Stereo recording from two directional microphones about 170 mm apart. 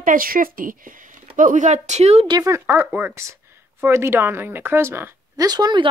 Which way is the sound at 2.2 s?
20° right (ahead or behind).